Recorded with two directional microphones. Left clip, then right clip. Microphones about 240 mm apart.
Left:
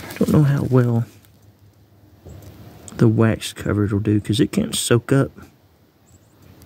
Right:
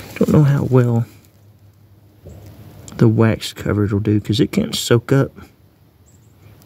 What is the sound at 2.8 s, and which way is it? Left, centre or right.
Speech, centre.